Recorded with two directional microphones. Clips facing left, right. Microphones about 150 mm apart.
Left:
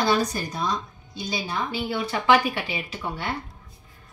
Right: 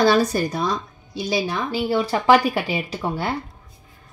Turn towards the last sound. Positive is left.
turn(degrees=-35)  # may be behind; listen again after turning